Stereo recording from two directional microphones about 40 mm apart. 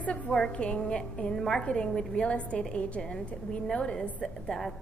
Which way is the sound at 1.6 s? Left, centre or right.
Left.